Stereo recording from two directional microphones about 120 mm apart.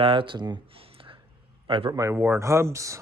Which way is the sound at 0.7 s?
50° right (ahead or behind).